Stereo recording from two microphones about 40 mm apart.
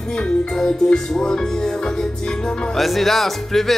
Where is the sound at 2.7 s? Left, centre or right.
Centre.